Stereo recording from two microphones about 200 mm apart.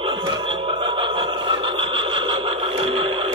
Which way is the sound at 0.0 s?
25° right (ahead or behind).